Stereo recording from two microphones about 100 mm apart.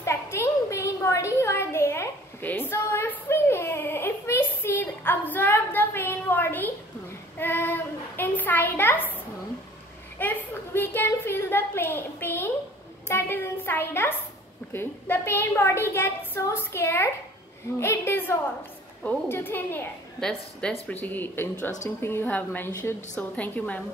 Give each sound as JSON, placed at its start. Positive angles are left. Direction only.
{"t": 0.0, "sound": "a sound", "side_deg": 30}
{"t": 7.3, "sound": "child singing", "side_deg": 20}
{"t": 10.1, "sound": "a sound", "side_deg": 20}
{"t": 14.7, "sound": "a woman's voice", "side_deg": 25}
{"t": 20.2, "sound": "a woman's voice", "side_deg": 5}
{"t": 20.9, "sound": "a woman's voice", "side_deg": 15}